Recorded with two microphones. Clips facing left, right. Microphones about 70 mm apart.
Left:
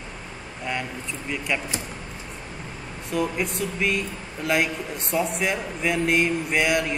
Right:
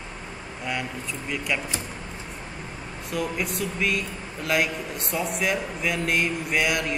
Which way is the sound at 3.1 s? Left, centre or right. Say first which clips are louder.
Left 3 dB; centre.